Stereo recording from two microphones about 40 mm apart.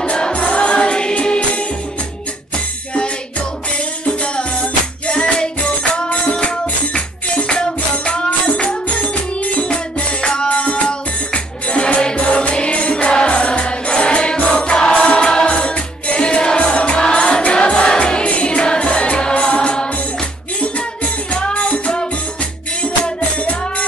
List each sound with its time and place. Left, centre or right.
0.0 s music: left
3.7 s music: left